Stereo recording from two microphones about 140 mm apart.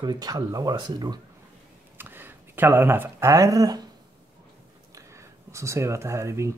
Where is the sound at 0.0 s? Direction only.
30° right (ahead or behind).